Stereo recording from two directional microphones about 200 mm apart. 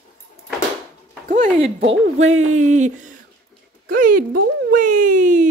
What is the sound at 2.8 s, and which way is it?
Speech, 40° right (ahead or behind).